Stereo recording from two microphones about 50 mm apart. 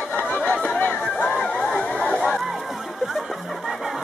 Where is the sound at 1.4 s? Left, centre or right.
Centre.